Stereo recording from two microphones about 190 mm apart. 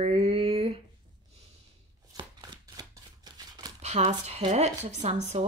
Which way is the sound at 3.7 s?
35° right (ahead or behind).